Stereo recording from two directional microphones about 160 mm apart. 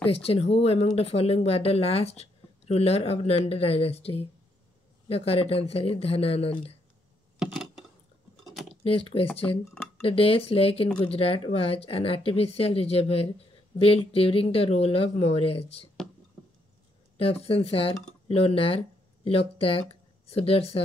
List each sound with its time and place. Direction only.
0.0 s speech: 35° left (ahead or behind)
7.3 s a sound: 5° right (ahead or behind)
10.0 s speech: 35° left (ahead or behind)
17.2 s speech: 35° left (ahead or behind)